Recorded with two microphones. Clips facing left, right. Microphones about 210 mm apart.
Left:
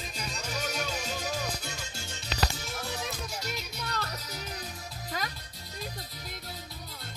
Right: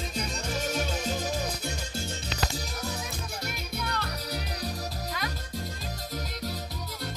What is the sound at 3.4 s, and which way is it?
Music, 55° right (ahead or behind).